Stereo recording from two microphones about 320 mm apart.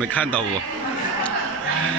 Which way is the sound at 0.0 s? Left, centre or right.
Centre.